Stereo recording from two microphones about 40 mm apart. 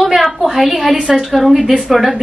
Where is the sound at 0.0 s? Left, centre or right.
Centre.